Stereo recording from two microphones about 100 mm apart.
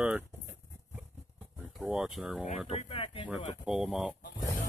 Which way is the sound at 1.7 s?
5° right (ahead or behind).